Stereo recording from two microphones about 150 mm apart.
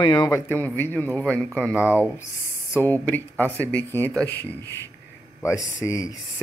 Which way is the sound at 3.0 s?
10° left (ahead or behind).